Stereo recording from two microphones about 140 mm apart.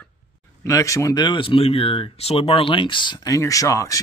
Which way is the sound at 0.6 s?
25° left (ahead or behind).